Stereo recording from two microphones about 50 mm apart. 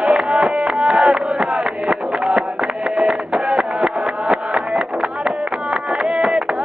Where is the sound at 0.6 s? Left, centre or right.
Centre.